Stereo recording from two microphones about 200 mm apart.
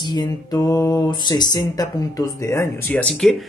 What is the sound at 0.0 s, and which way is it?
Speech, 20° left (ahead or behind).